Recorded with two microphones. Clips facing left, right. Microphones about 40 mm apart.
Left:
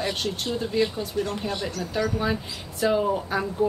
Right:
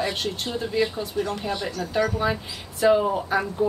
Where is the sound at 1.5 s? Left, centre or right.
Right.